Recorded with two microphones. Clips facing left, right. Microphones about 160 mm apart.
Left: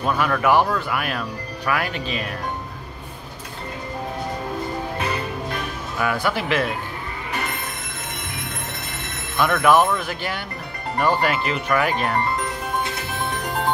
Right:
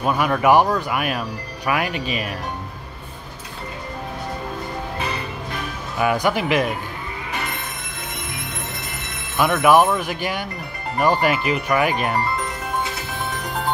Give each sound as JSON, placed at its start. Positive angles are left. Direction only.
{"t": 0.0, "sound": "speech", "side_deg": -15}
{"t": 5.9, "sound": "speech", "side_deg": -15}
{"t": 9.4, "sound": "speech", "side_deg": -10}